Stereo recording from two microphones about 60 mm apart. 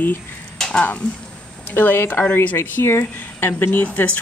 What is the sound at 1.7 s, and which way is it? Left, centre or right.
Speech, left.